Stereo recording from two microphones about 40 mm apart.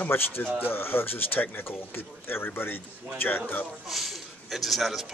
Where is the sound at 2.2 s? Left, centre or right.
Left.